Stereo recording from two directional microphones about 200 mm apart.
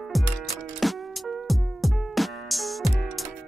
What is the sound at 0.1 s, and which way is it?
Music, centre (ahead or behind).